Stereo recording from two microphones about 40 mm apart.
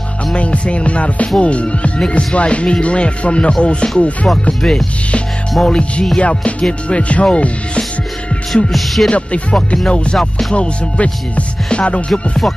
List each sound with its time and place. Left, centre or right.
0.4 s music: left
4.6 s music: centre
6.1 s music: left
8.6 s music: centre
9.1 s music: left
10.1 s music: centre
10.5 s music: left
12.1 s music: centre